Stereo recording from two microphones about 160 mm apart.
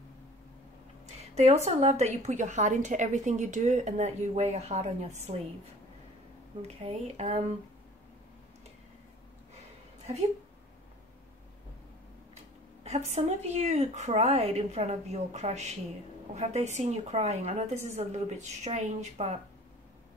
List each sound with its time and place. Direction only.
1.0 s a woman's voice: 45° right (ahead or behind)
6.8 s speech: 40° right (ahead or behind)
12.8 s a woman's voice: 45° right (ahead or behind)